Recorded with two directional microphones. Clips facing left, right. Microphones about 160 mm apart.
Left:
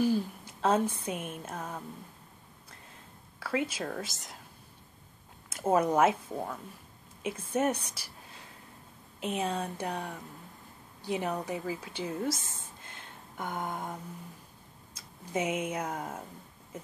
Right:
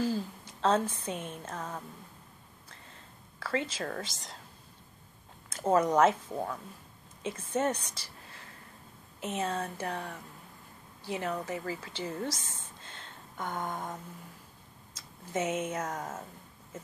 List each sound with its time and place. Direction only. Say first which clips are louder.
0.0 s speech: left 4 dB; 15° left (ahead or behind)
2.7 s whispering: left 1 dB; 10° left (ahead or behind)
5.5 s speech: even; 10° left (ahead or behind)
15.3 s speech: even; 10° left (ahead or behind)